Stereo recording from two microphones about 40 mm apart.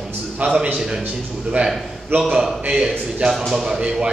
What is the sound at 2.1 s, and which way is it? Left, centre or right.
Speech, right.